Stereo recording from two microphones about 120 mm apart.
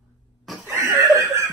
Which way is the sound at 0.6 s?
25° right (ahead or behind).